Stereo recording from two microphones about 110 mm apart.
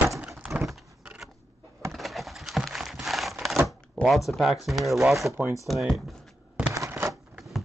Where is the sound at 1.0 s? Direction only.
10° right (ahead or behind).